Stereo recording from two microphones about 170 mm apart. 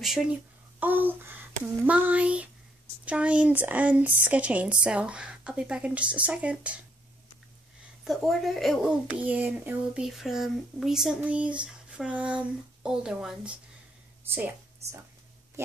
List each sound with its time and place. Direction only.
0.0 s speech: centre (ahead or behind)
8.0 s speech: centre (ahead or behind)
9.2 s speech: 10° right (ahead or behind)
14.8 s speech: 40° right (ahead or behind)